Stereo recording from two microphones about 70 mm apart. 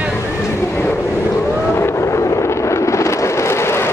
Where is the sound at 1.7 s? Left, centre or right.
Left.